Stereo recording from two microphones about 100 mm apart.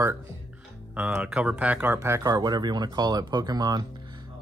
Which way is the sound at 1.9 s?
30° right (ahead or behind).